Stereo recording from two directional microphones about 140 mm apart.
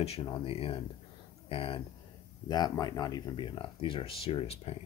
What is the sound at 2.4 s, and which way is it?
Speech, 30° left (ahead or behind).